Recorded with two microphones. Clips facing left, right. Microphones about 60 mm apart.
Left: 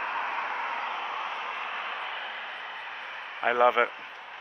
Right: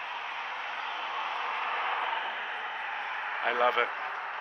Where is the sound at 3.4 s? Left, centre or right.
Centre.